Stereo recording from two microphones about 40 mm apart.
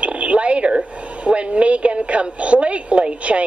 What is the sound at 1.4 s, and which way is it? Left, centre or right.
Speech, right.